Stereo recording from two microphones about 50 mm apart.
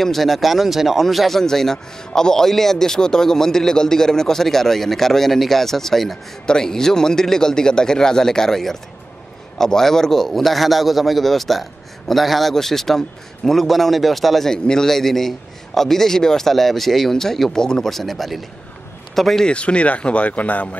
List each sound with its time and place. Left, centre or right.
0.0 s a man's voice: centre
19.4 s speech: left